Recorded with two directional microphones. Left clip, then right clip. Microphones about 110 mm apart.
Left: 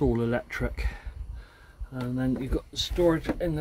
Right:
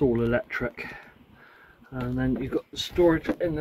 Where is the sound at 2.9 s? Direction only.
5° right (ahead or behind).